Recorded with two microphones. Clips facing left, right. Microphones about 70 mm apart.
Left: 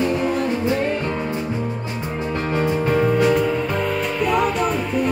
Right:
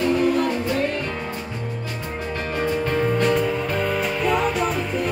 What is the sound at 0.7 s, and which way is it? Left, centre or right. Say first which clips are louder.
Music: left 3 dB; left.